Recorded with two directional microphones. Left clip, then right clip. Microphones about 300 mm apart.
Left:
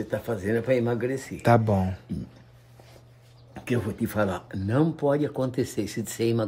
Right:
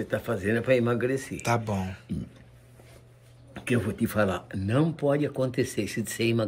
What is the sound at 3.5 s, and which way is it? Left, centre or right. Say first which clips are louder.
Speech: right 1 dB; centre.